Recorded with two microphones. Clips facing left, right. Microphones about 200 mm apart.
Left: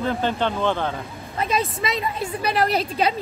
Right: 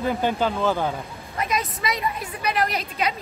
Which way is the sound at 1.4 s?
30° left (ahead or behind).